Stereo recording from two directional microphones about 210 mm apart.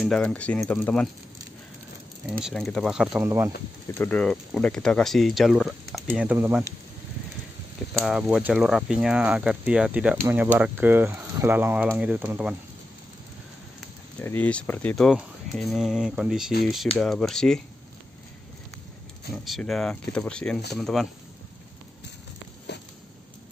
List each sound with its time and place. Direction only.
0.0 s speech: 5° left (ahead or behind)
2.4 s speech: centre (ahead or behind)
3.3 s speech: 15° right (ahead or behind)
4.0 s speech: 5° left (ahead or behind)
8.0 s speech: 5° right (ahead or behind)
14.2 s speech: 10° left (ahead or behind)
19.3 s speech: centre (ahead or behind)
22.7 s a sound: 55° left (ahead or behind)